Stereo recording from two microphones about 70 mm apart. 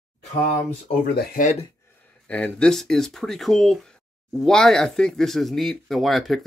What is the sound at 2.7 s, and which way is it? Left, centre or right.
Speech, centre.